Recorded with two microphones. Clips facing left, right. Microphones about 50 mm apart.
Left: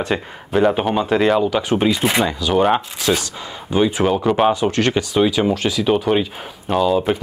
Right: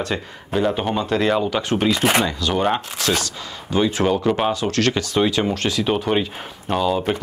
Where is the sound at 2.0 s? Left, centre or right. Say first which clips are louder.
Even; right.